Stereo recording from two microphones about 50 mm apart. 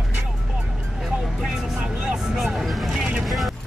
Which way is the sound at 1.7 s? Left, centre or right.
Right.